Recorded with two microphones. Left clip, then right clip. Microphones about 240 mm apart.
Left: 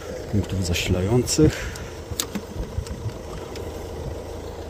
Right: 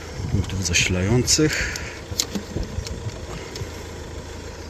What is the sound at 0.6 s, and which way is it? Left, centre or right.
Speech, centre.